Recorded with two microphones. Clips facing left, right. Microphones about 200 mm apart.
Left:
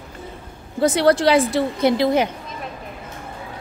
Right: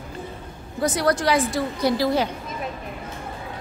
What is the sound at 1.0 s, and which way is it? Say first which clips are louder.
A woman's voice: left 5 dB; 30° left (ahead or behind).